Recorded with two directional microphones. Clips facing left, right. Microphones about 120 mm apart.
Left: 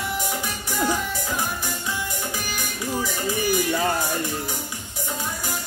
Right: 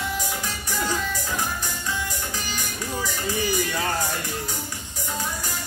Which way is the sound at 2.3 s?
15° left (ahead or behind).